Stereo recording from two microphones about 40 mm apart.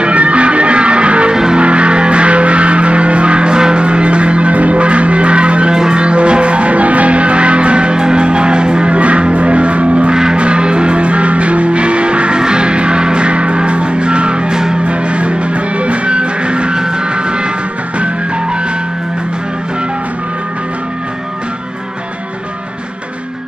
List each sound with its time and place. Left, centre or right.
0.0 s music: right
1.3 s music: centre
1.6 s music: right